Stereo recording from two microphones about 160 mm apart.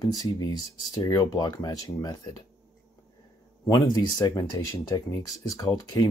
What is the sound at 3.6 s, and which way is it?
Speech, 20° left (ahead or behind).